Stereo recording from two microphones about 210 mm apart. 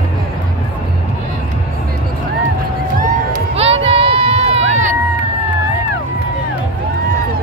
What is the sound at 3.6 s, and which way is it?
Run, 25° right (ahead or behind).